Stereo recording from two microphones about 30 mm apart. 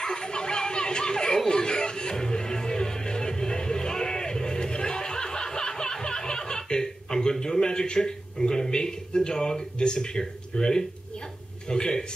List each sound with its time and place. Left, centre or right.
0.0 s a sound: left
1.5 s music: left
11.7 s a man's voice: left